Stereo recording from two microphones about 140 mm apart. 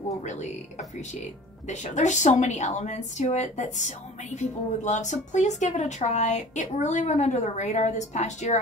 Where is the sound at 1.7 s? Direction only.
60° left (ahead or behind).